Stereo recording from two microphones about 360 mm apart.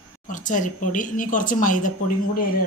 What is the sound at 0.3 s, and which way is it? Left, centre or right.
Speech, left.